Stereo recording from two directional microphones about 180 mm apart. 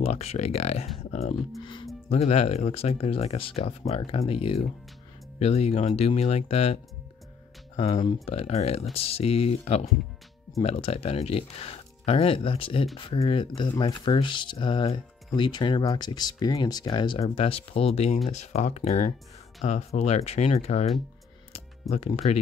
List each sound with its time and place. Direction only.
0.0 s speech: 35° left (ahead or behind)
1.6 s speech: 25° left (ahead or behind)
2.0 s speech: 35° left (ahead or behind)
7.8 s speech: 30° left (ahead or behind)